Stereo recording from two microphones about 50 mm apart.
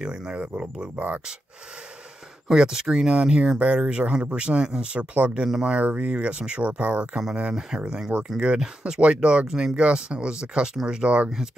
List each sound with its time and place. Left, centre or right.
0.0 s speech: centre
0.9 s speech: right
2.4 s speech: centre
5.1 s speech: right
5.4 s speech: centre
5.7 s speech: right